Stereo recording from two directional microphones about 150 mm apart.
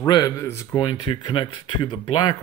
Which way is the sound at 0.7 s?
30° left (ahead or behind).